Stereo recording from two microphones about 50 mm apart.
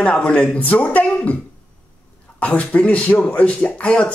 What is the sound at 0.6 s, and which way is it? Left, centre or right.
Speech, left.